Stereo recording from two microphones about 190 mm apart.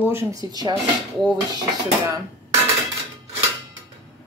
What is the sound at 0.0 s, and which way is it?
Speech, 15° right (ahead or behind).